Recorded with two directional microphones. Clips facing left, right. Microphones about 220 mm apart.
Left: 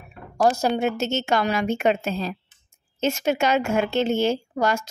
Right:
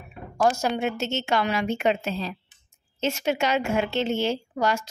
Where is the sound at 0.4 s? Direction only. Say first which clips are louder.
Left 3 dB; 35° left (ahead or behind).